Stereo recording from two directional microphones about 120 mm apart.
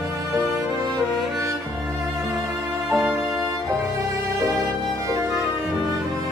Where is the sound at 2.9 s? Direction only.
5° right (ahead or behind).